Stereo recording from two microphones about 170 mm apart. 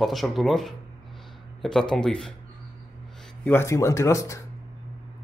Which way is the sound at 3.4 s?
15° left (ahead or behind).